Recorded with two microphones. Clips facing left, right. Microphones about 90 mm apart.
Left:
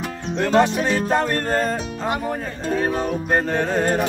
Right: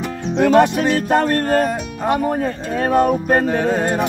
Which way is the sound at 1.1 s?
55° right (ahead or behind).